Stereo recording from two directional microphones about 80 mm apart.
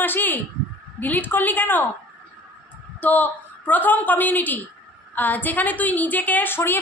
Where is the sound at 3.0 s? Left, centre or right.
Left.